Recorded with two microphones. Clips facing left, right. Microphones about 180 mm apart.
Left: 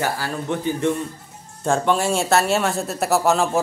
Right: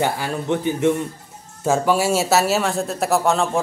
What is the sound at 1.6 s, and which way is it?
Speech, 5° right (ahead or behind).